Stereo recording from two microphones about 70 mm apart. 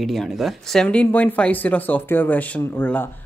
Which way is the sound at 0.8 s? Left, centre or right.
Centre.